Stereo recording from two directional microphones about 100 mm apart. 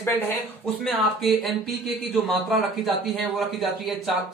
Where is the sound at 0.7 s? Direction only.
Centre (ahead or behind).